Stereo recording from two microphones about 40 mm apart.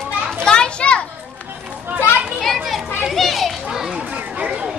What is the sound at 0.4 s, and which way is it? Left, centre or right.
Children playing, left.